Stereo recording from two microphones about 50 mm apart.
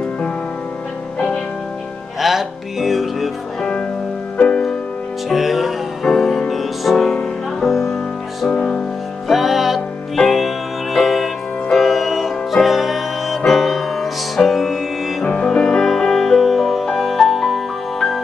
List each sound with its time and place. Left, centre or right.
2.1 s music: centre
4.4 s music: left
5.3 s music: centre
8.5 s music: centre
9.3 s music: centre